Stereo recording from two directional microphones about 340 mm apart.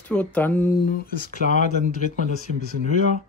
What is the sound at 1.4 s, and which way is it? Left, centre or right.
Speech, right.